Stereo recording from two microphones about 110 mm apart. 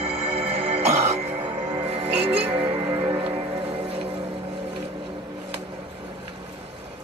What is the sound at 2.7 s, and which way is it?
Music, 35° right (ahead or behind).